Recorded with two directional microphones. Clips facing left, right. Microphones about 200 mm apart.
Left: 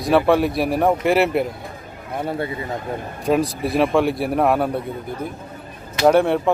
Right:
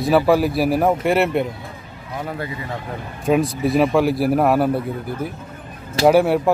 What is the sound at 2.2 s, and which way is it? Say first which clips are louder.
Speech: left 4 dB; 25° left (ahead or behind).